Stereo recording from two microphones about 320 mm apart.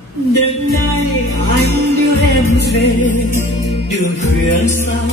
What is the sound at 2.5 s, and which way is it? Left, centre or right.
Music, left.